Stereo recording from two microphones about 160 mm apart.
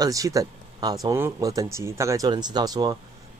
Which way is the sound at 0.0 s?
20° right (ahead or behind).